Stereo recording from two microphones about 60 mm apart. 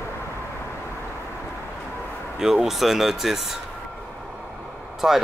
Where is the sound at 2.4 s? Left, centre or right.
Centre.